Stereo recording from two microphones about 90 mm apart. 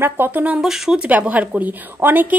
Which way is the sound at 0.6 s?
5° right (ahead or behind).